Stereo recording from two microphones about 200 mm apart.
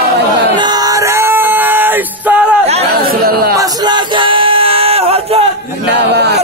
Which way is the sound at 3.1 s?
50° right (ahead or behind).